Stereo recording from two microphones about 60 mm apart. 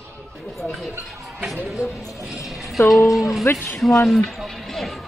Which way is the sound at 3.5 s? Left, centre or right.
Left.